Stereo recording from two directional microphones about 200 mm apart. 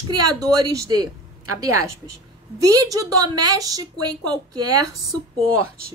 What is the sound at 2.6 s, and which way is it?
A woman's voice, 15° right (ahead or behind).